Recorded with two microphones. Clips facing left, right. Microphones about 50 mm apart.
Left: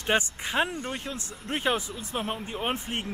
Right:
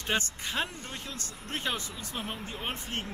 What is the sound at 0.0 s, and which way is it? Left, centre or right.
Speech, left.